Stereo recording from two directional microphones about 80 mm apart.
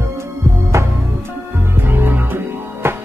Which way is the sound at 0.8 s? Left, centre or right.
Right.